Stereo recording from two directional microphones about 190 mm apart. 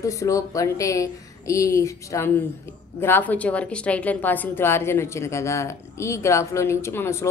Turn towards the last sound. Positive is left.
turn(degrees=15)  # may be behind; listen again after turning